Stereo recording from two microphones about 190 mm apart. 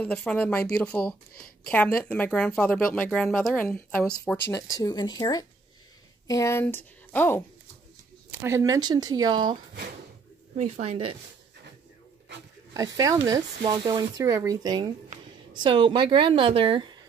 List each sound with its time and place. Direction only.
0.0 s a woman's voice: 5° left (ahead or behind)
8.3 s speech: 10° right (ahead or behind)
10.6 s speech: 35° right (ahead or behind)
12.7 s speech: 20° right (ahead or behind)